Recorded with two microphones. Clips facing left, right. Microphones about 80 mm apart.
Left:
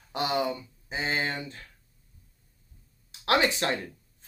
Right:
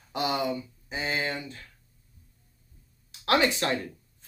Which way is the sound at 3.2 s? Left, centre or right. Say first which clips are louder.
Right 1 dB; left.